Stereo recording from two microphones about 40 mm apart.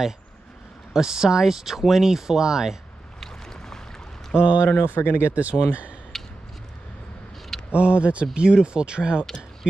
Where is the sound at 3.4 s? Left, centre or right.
Centre.